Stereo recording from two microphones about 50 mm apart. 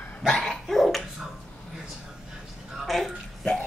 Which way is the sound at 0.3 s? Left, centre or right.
Centre.